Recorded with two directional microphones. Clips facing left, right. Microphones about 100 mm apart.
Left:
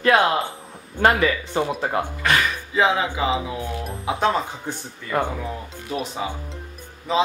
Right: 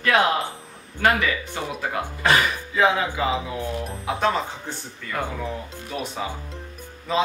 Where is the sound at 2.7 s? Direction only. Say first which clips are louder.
Left 1 dB; 20° left (ahead or behind).